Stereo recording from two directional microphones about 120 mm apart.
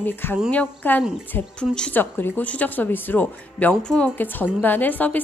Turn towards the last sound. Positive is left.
turn(degrees=15)  # may be behind; listen again after turning